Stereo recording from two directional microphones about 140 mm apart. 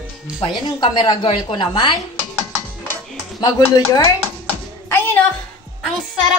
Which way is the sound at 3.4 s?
25° left (ahead or behind).